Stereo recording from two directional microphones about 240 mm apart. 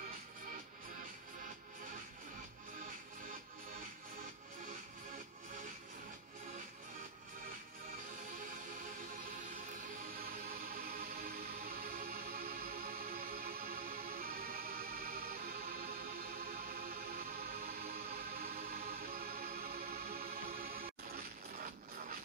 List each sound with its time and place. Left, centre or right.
10.2 s music: right
18.4 s music: right